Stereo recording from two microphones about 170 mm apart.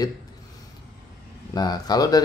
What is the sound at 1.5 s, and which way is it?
Speech, 25° left (ahead or behind).